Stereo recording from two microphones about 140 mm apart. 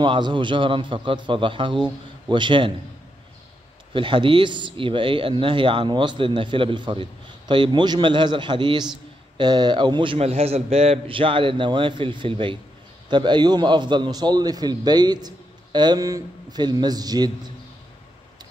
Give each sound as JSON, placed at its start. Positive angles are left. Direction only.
{"t": 0.0, "sound": "speech", "side_deg": -35}
{"t": 3.9, "sound": "a man's voice", "side_deg": -35}